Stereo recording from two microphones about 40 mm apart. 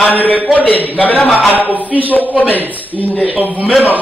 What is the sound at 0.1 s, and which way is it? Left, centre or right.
A man's voice, left.